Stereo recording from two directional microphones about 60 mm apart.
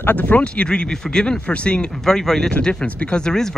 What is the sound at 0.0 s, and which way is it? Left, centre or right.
Speech, left.